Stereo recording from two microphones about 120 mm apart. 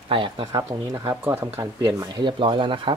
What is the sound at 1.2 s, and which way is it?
Speech, 20° right (ahead or behind).